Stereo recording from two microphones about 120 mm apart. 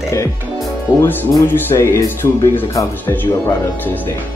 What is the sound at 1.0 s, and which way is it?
Speech, 15° left (ahead or behind).